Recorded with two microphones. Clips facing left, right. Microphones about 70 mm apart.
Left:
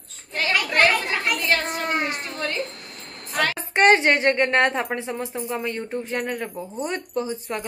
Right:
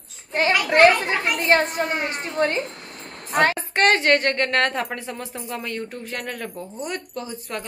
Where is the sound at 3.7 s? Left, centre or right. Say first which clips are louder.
Left 5 dB; centre.